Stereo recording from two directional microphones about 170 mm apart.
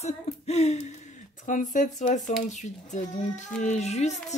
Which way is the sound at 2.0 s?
45° left (ahead or behind).